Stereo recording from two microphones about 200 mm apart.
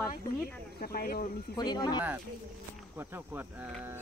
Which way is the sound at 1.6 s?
20° left (ahead or behind).